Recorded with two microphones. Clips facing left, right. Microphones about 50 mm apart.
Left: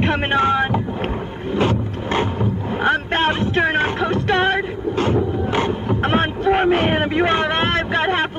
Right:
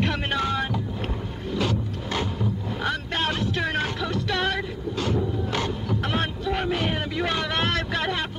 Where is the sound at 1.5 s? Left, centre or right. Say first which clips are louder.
Left 7 dB; left.